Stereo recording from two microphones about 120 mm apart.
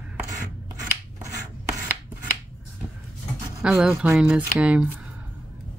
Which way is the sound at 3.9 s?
20° right (ahead or behind).